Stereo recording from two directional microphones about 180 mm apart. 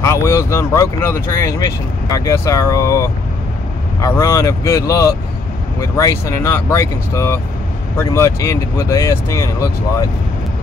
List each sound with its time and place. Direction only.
0.0 s speech: 15° left (ahead or behind)